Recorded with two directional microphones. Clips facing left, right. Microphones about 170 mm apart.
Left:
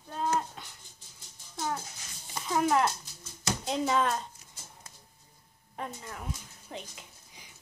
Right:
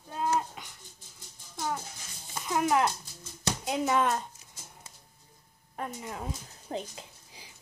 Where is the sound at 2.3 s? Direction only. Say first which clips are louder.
Even; centre (ahead or behind).